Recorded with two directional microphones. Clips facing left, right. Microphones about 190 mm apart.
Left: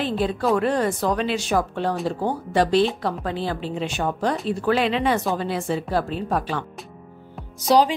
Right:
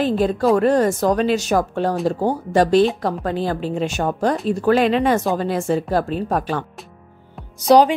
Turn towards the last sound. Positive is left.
turn(degrees=-60)  # may be behind; listen again after turning